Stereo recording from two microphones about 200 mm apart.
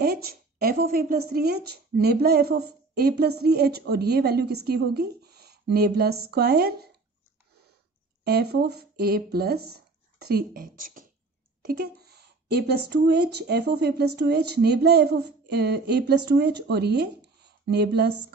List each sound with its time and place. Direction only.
0.0 s a woman's voice: 50° right (ahead or behind)
8.2 s speech: 50° right (ahead or behind)
11.6 s speech: 55° right (ahead or behind)